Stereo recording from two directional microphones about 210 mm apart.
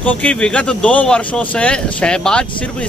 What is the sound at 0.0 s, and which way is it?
Speech, 5° left (ahead or behind).